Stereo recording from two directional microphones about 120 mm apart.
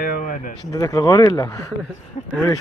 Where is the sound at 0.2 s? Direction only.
90° left.